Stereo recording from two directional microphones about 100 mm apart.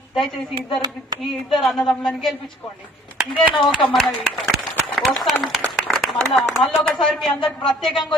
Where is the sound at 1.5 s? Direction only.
Centre (ahead or behind).